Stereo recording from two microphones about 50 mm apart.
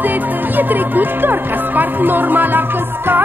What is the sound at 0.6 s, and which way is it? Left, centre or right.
Speech, right.